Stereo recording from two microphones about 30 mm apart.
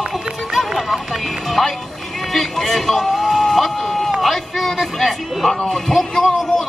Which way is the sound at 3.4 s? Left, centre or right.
Centre.